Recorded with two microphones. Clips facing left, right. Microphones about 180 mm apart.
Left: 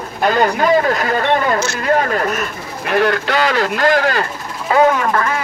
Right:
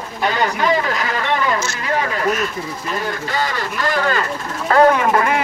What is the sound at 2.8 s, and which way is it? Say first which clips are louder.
Speech: left 11 dB; 70° left (ahead or behind).